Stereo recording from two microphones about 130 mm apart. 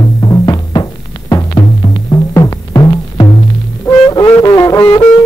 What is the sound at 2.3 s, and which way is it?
Music, 30° left (ahead or behind).